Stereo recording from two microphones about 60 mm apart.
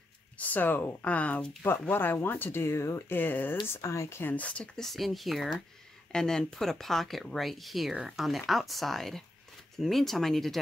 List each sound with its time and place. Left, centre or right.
0.4 s speech: left
3.1 s speech: left
3.8 s speech: left
4.2 s speech: left
4.7 s speech: centre